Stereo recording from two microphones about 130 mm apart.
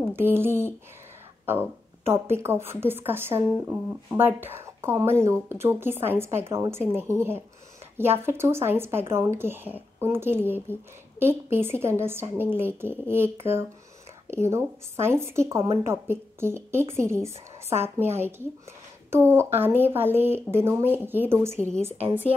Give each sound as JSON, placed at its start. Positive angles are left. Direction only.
{"t": 0.1, "sound": "a woman's voice", "side_deg": -15}